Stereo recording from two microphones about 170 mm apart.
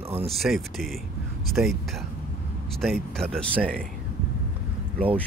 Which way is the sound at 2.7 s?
5° left (ahead or behind).